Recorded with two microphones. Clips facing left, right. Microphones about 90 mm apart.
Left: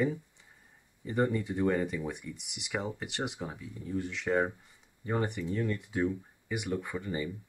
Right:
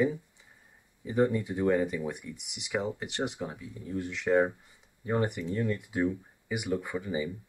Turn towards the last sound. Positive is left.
turn(degrees=-5)  # may be behind; listen again after turning